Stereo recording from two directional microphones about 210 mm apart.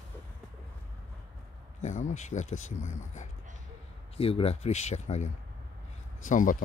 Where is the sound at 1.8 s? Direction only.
35° left (ahead or behind).